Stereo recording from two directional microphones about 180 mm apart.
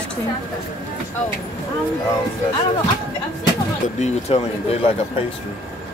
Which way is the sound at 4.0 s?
40° left (ahead or behind).